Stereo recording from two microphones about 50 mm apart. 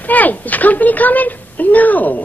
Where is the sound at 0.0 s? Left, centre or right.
Left.